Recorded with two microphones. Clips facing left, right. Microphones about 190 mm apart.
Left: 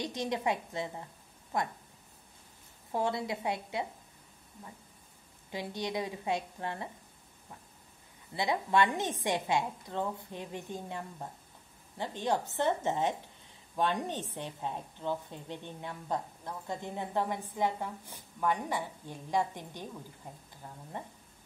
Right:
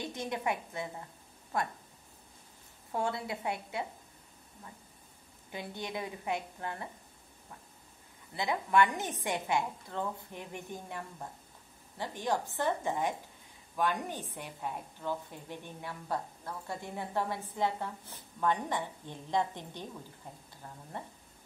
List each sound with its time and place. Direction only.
0.0 s a woman's voice: 20° left (ahead or behind)
2.9 s a woman's voice: 20° left (ahead or behind)
5.5 s a woman's voice: 20° left (ahead or behind)
8.4 s a woman's voice: 20° left (ahead or behind)
12.0 s a woman's voice: 20° left (ahead or behind)
21.0 s speech: 15° left (ahead or behind)